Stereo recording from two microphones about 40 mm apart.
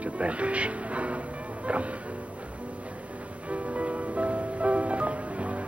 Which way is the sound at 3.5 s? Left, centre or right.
Right.